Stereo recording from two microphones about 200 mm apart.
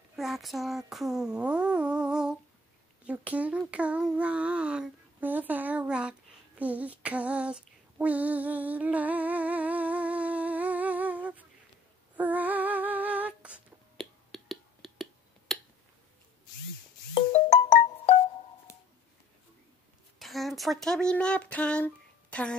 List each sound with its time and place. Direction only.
0.1 s a sound: centre (ahead or behind)
6.6 s female singing: 5° right (ahead or behind)
12.2 s humming: 10° right (ahead or behind)
17.1 s music: 30° left (ahead or behind)
20.2 s speech: centre (ahead or behind)